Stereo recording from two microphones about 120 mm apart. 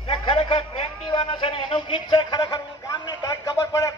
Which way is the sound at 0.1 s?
50° left (ahead or behind).